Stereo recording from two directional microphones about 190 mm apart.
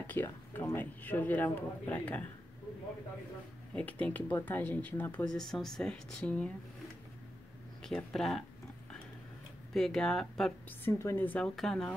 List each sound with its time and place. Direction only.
0.0 s speech: 10° left (ahead or behind)
3.7 s speech: 5° left (ahead or behind)
7.8 s speech: centre (ahead or behind)
9.8 s speech: 5° left (ahead or behind)
10.9 s speech: 15° left (ahead or behind)